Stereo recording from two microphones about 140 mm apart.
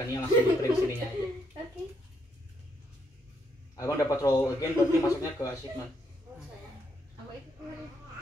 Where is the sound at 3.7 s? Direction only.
25° left (ahead or behind).